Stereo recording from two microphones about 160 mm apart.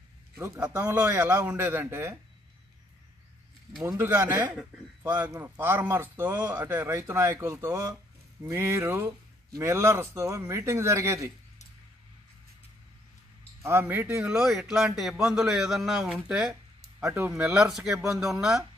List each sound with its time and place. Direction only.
0.6 s speech: 10° right (ahead or behind)
0.9 s a man's voice: 20° right (ahead or behind)
3.8 s speech: 20° right (ahead or behind)
13.6 s speech: 15° right (ahead or behind)
17.0 s speech: 15° right (ahead or behind)